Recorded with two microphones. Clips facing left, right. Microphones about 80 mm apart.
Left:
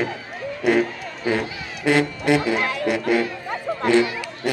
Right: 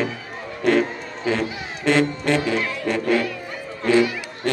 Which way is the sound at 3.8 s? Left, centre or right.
Centre.